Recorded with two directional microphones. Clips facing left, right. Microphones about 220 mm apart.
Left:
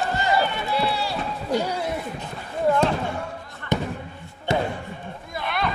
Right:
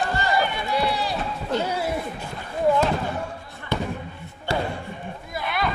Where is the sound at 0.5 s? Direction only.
15° right (ahead or behind).